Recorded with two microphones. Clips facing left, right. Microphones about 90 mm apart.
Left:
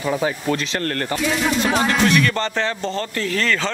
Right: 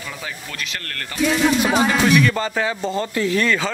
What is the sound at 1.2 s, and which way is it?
Speech, centre (ahead or behind).